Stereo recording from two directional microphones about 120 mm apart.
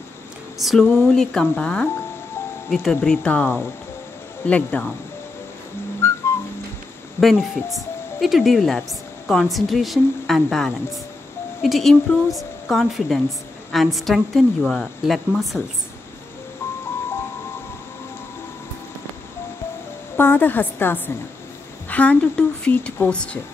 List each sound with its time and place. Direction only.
0.6 s a woman's voice: centre (ahead or behind)
6.0 s whistling: 20° left (ahead or behind)
7.2 s a woman's voice: centre (ahead or behind)
20.2 s speech: 15° left (ahead or behind)